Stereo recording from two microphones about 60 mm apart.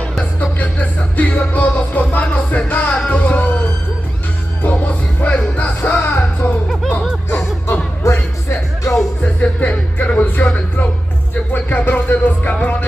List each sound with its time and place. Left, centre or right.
0.2 s music: left
6.7 s music: centre
8.0 s music: left
9.2 s music: left